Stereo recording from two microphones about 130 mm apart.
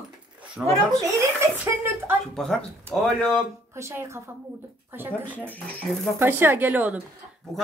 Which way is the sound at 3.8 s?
20° right (ahead or behind).